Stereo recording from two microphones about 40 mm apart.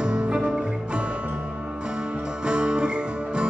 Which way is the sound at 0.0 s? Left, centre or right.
Right.